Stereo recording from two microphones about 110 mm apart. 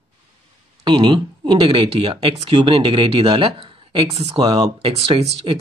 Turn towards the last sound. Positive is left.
turn(degrees=-55)  # may be behind; listen again after turning